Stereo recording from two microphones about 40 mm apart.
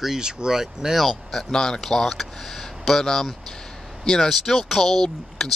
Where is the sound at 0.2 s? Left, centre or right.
Centre.